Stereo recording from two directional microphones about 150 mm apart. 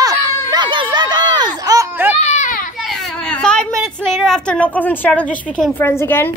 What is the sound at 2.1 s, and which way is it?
Children playing, 50° left (ahead or behind).